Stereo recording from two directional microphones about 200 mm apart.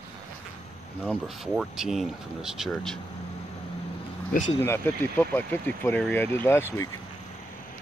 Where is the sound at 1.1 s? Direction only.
Centre (ahead or behind).